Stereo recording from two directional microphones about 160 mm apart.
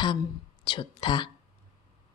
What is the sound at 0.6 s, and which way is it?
Speech, 30° left (ahead or behind).